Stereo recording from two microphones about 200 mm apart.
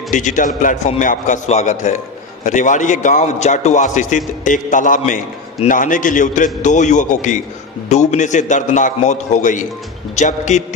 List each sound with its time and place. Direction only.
0.1 s a man's voice: 40° left (ahead or behind)